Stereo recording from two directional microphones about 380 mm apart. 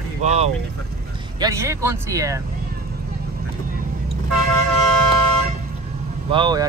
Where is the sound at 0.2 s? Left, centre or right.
Centre.